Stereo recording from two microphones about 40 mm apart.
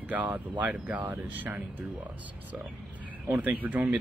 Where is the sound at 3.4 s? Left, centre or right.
Right.